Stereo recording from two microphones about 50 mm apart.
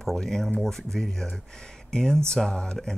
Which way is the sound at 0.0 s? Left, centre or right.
Centre.